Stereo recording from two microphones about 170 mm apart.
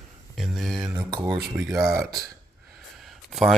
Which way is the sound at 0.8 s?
20° right (ahead or behind).